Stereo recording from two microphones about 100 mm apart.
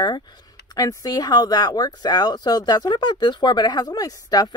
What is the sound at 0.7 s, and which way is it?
Speech, 35° left (ahead or behind).